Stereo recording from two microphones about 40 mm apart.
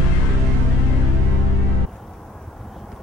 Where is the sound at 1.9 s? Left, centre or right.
Centre.